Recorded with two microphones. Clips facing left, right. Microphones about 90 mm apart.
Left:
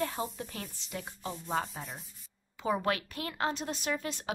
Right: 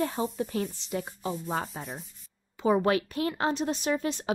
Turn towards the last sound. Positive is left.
turn(degrees=-25)  # may be behind; listen again after turning